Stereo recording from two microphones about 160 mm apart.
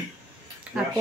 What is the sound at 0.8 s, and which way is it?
Speech, 5° right (ahead or behind).